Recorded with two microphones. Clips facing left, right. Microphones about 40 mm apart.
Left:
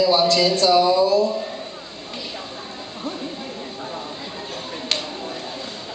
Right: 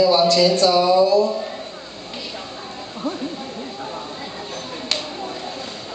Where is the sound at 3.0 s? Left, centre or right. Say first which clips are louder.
Right 4 dB; centre.